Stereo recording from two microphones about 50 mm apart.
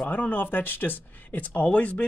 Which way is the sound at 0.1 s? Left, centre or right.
Left.